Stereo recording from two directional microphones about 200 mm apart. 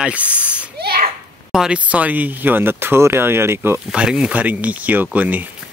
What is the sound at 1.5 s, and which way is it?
Speech, 5° right (ahead or behind).